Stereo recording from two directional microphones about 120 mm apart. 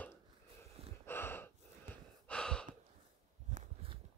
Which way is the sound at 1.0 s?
20° left (ahead or behind).